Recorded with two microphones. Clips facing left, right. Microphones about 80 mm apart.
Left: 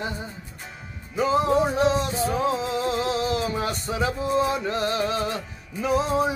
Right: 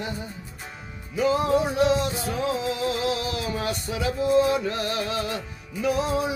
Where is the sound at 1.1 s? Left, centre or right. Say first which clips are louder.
Left 1 dB; left.